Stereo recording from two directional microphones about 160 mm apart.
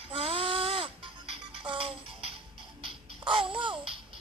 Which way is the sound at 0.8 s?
35° right (ahead or behind).